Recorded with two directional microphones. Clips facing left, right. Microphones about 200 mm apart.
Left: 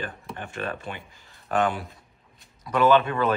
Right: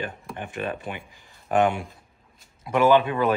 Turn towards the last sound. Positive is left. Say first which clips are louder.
# right 1 dB
turn(degrees=-15)  # may be behind; listen again after turning